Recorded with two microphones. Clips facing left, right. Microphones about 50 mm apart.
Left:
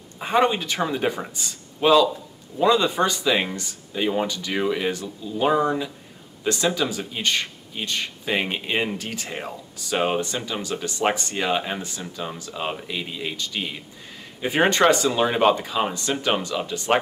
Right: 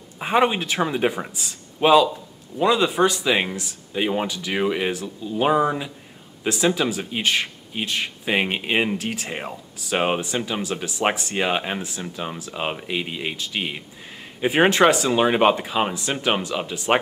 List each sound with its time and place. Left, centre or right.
0.2 s speech: centre
3.9 s speech: centre
8.9 s speech: centre
11.3 s speech: centre
15.1 s speech: right